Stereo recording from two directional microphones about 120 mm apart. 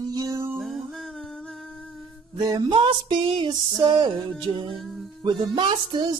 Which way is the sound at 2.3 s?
35° right (ahead or behind).